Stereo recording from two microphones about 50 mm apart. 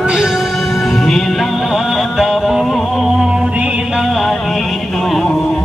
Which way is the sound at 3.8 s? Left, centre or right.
Centre.